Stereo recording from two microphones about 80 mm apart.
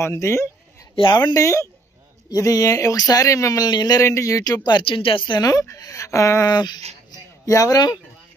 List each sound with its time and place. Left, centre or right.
0.0 s speech: left
0.9 s speech: left
1.3 s speech: left
3.6 s speech: left
4.0 s speech: left
4.7 s speech: left
5.4 s speech: left
6.5 s speech: left
7.4 s speech: left